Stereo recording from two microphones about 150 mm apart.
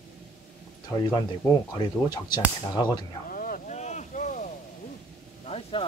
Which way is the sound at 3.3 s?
65° left (ahead or behind).